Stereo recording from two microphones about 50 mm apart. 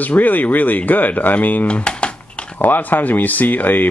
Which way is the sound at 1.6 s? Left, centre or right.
Left.